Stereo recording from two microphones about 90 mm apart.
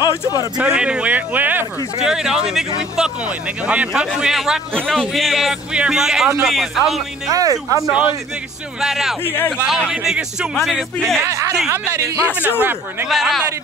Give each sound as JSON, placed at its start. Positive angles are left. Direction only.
{"t": 0.6, "sound": "speech", "side_deg": -10}
{"t": 2.0, "sound": "a man's voice", "side_deg": -5}
{"t": 7.2, "sound": "speech", "side_deg": -40}
{"t": 8.8, "sound": "a man's voice", "side_deg": -5}
{"t": 9.2, "sound": "a man's voice", "side_deg": 25}
{"t": 9.7, "sound": "a man's voice", "side_deg": -5}
{"t": 11.2, "sound": "speech", "side_deg": -30}
{"t": 13.1, "sound": "a man's voice", "side_deg": 0}